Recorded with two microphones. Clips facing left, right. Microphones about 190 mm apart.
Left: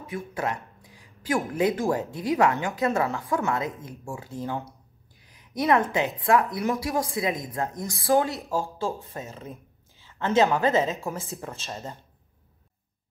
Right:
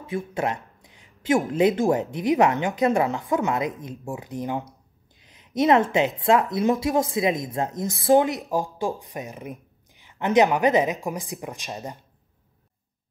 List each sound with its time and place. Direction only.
0.0 s speech: 25° right (ahead or behind)
5.2 s a sound: 20° right (ahead or behind)
6.2 s speech: 20° right (ahead or behind)